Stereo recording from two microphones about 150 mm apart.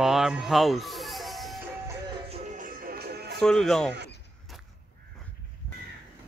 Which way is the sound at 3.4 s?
5° left (ahead or behind).